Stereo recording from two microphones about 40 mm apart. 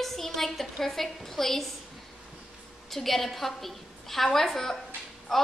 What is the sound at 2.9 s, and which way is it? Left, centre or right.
A woman's voice, centre.